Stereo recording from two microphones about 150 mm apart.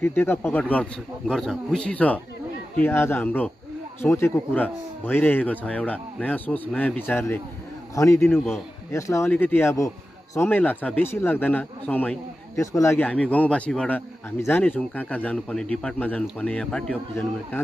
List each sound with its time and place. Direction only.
0.0 s speech: 15° left (ahead or behind)